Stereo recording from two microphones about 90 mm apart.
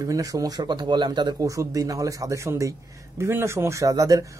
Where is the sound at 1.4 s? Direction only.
40° right (ahead or behind).